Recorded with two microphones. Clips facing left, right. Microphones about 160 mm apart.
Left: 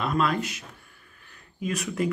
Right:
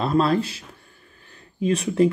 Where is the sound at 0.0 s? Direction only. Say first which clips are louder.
Right 5 dB; 35° right (ahead or behind).